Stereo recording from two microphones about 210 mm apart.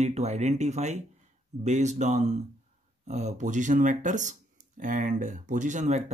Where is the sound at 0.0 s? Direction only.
30° right (ahead or behind).